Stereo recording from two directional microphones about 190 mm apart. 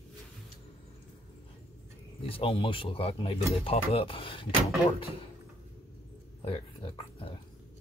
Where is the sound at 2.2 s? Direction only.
30° left (ahead or behind).